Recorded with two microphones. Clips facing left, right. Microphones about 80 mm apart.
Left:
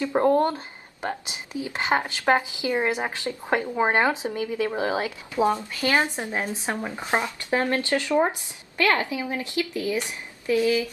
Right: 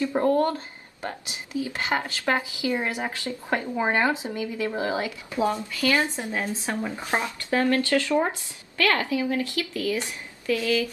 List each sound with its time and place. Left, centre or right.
0.0 s speech: left